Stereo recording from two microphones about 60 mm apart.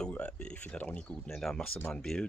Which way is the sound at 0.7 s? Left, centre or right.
Left.